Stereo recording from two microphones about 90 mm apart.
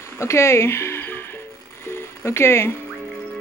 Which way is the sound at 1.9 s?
30° left (ahead or behind).